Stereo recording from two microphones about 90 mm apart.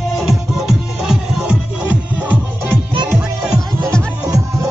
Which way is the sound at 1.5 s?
15° right (ahead or behind).